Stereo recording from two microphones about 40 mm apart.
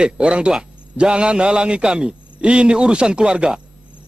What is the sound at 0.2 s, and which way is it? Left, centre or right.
Speech, right.